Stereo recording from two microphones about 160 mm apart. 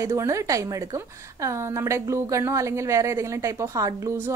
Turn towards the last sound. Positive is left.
turn(degrees=-15)  # may be behind; listen again after turning